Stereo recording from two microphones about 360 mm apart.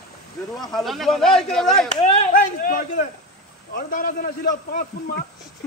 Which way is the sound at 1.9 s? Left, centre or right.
Centre.